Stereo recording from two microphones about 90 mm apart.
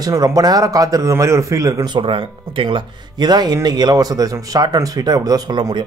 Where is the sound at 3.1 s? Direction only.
50° right (ahead or behind).